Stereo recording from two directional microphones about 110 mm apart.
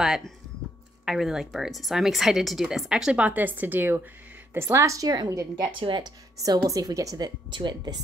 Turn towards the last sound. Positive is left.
turn(degrees=-45)  # may be behind; listen again after turning